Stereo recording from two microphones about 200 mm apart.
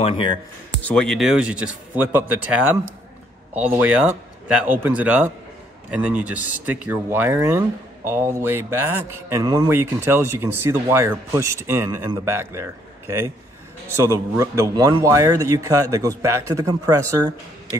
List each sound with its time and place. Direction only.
0.0 s speech: 25° left (ahead or behind)
0.8 s speech: 5° left (ahead or behind); by 17.3 s 15° right (ahead or behind)